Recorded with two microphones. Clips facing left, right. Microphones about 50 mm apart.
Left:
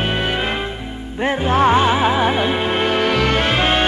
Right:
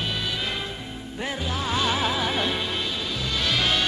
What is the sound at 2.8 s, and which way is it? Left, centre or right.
Music, left.